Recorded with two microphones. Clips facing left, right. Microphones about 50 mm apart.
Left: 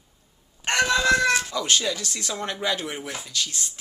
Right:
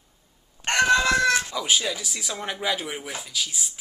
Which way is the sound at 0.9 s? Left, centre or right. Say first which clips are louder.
Left 1 dB; centre.